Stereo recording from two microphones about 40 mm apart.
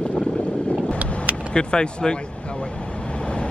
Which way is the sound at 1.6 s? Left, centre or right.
Centre.